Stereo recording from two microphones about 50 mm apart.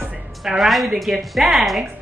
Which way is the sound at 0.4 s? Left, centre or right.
Centre.